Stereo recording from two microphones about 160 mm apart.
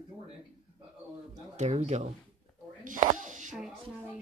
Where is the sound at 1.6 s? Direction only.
50° right (ahead or behind).